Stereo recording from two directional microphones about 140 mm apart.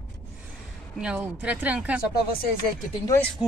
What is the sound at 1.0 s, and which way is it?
Speech, 10° right (ahead or behind).